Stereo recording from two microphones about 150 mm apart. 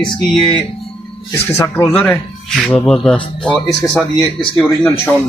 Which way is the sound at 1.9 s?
5° left (ahead or behind).